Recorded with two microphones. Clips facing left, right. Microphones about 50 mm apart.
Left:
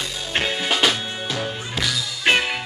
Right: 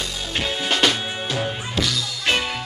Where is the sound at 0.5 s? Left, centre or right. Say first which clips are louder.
Right 1 dB; centre.